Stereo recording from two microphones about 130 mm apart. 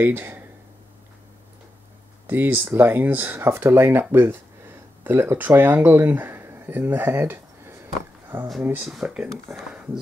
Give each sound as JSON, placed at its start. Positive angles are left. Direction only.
{"t": 0.0, "sound": "speech", "side_deg": -15}
{"t": 2.2, "sound": "speech", "side_deg": -15}
{"t": 8.8, "sound": "speech", "side_deg": -5}